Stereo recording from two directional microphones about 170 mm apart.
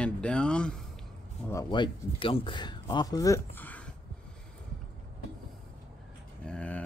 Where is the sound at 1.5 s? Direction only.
25° left (ahead or behind).